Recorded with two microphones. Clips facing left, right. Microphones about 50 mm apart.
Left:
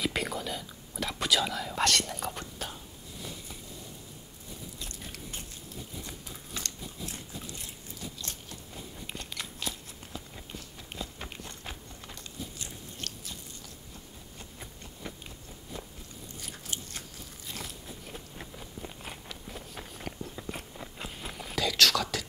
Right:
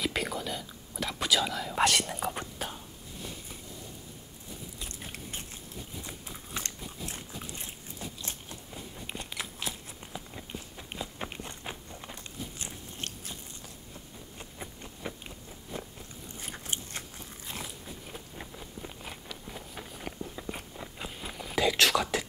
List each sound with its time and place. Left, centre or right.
0.0 s whispering: centre
1.8 s speech: centre
4.8 s biting: right
9.0 s biting: centre
14.4 s a sound: centre
16.3 s biting: right
17.6 s biting: centre
21.5 s whispering: right